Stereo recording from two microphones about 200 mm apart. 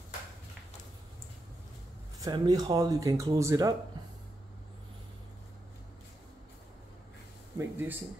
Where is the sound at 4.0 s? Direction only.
20° right (ahead or behind).